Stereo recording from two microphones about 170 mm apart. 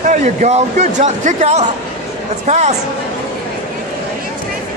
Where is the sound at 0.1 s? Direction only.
45° right (ahead or behind).